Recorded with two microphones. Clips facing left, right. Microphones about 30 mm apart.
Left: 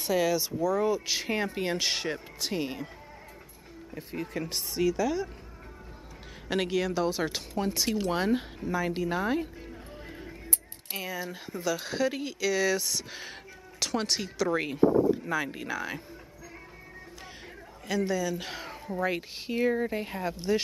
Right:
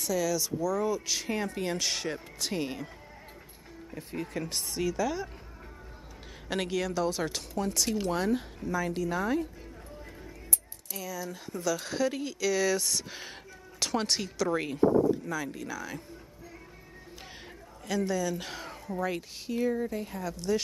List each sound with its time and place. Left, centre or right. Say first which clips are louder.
0.0 s speech: left 3 dB; left
2.1 s speech: left 1 dB; centre
3.9 s speech: left 1 dB; centre
6.5 s speech: left 2 dB; centre; by 9.5 s left
10.9 s speech: left 2 dB; left; by 15.1 s centre
15.2 s speech: left 3 dB; left
17.8 s speech: left 1 dB; centre
19.5 s speech: left 2 dB; left